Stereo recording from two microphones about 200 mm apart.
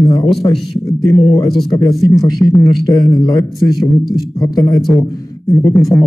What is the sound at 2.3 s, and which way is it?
A man's voice, 15° left (ahead or behind).